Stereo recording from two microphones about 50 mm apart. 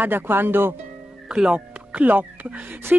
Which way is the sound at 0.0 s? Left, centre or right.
Right.